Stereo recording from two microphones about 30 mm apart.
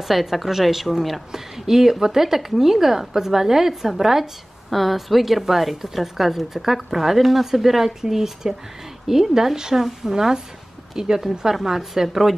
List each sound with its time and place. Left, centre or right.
0.1 s a woman's voice: centre
1.3 s a woman's voice: centre